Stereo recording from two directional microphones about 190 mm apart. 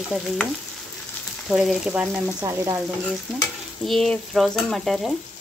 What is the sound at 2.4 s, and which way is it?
Frying, 15° right (ahead or behind).